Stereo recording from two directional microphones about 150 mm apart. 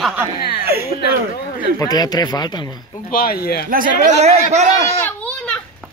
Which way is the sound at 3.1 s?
85° left.